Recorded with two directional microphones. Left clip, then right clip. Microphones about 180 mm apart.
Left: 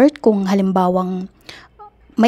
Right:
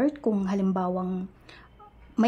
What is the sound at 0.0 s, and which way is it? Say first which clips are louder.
A woman's voice: left 13 dB; 40° left (ahead or behind).